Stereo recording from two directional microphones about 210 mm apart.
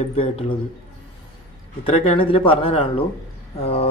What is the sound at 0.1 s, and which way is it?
Speech, 25° left (ahead or behind).